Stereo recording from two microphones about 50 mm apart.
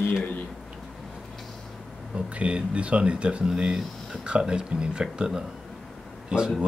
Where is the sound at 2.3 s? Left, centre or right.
Right.